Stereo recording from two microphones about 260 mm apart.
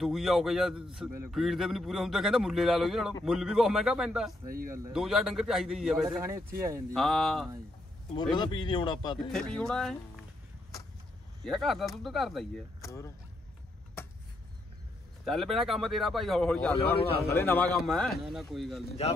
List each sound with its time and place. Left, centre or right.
0.0 s a man's voice: centre
4.5 s speech: right
4.9 s a man's voice: centre
6.9 s a man's voice: centre
8.4 s speech: centre
9.3 s a man's voice: centre
11.4 s a man's voice: centre
12.8 s speech: centre
15.2 s a man's voice: centre